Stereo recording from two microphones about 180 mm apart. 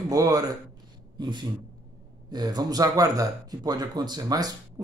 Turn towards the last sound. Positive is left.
turn(degrees=-20)  # may be behind; listen again after turning